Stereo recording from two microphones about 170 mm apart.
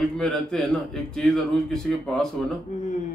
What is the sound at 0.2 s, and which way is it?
A man's voice, 5° left (ahead or behind).